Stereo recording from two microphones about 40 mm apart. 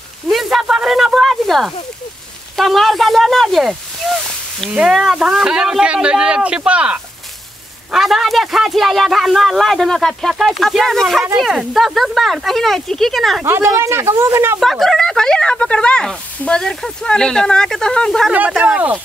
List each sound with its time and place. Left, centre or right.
0.3 s a sound: centre
0.7 s speech: centre
1.3 s a sound: centre
2.5 s a man's voice: centre
4.1 s a sound: centre
5.1 s speech: centre; by 7.0 s right
7.9 s a man's voice: centre
13.5 s speech: right
14.6 s speech: centre